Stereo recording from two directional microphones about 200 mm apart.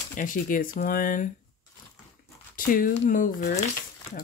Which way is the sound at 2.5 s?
45° left (ahead or behind).